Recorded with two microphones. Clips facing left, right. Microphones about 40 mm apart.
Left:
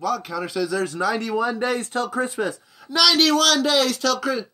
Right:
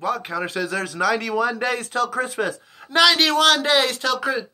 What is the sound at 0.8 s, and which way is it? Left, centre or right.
Speech, right.